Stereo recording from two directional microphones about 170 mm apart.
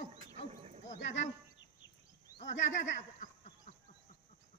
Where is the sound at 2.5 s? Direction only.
90° left.